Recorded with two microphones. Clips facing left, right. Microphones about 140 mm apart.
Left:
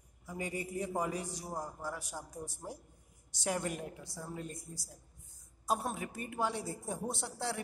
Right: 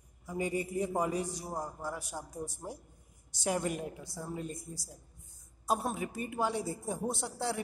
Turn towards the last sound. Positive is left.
turn(degrees=-10)  # may be behind; listen again after turning